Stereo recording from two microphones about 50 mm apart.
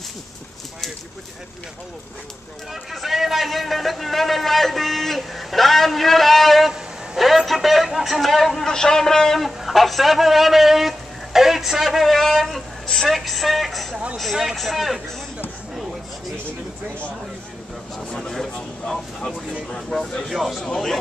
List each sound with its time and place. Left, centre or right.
2.7 s a man's voice: centre
12.8 s a woman's voice: centre
13.1 s a man's voice: centre
15.7 s a sound: centre
18.3 s a sound: centre
19.7 s speech: centre
20.2 s a man's voice: centre